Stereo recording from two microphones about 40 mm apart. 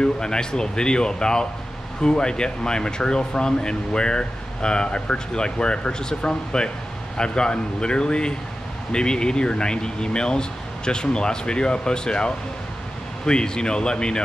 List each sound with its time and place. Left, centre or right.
0.0 s speech: centre